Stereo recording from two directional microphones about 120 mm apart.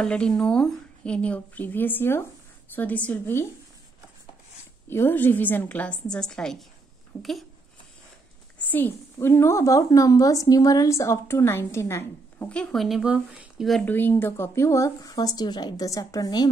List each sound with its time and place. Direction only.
0.0 s a woman's voice: 5° left (ahead or behind)
4.8 s a woman's voice: 20° left (ahead or behind); by 7.4 s centre (ahead or behind)
8.5 s a child's voice: 15° left (ahead or behind)
12.4 s speech: 10° left (ahead or behind); by 13.7 s 10° right (ahead or behind)
13.8 s a child's voice: 15° left (ahead or behind); by 16.4 s 35° left (ahead or behind)